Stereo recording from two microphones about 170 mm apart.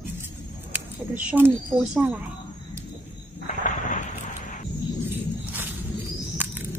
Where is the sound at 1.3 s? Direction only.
10° right (ahead or behind).